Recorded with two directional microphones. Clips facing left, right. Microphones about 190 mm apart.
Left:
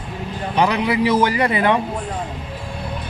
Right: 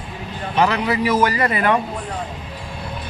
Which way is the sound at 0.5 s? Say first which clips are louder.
Even; 15° left (ahead or behind).